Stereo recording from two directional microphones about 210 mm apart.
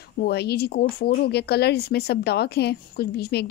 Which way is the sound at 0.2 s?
50° left (ahead or behind).